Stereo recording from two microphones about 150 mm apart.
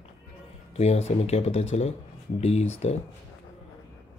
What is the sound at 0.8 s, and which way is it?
Speech, 45° left (ahead or behind).